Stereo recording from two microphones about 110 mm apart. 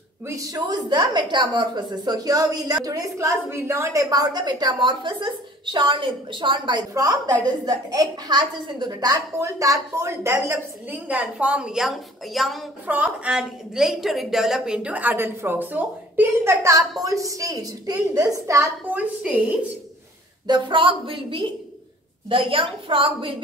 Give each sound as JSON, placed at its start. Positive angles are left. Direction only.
{"t": 0.3, "sound": "a woman's voice", "side_deg": -35}
{"t": 9.4, "sound": "a woman's voice", "side_deg": -30}
{"t": 12.8, "sound": "a woman's voice", "side_deg": -15}
{"t": 17.0, "sound": "a woman's voice", "side_deg": -30}
{"t": 18.9, "sound": "a woman's voice", "side_deg": -15}
{"t": 20.4, "sound": "a woman's voice", "side_deg": -45}